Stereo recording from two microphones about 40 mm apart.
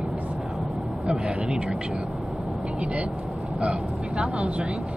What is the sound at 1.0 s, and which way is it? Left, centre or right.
Speech, centre.